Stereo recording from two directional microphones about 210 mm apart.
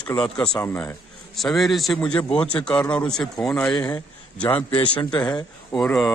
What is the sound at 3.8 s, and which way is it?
A man's voice, 15° left (ahead or behind).